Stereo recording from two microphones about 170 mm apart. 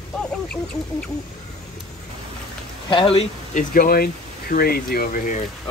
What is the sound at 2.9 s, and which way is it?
Speech, 30° left (ahead or behind).